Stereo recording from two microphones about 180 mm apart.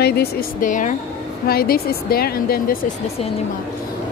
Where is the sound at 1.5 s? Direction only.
55° left (ahead or behind).